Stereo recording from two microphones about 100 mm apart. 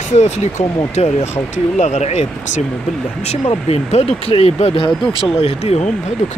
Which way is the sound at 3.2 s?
90° left.